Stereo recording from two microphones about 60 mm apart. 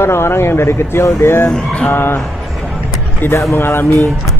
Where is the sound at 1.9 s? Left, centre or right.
Left.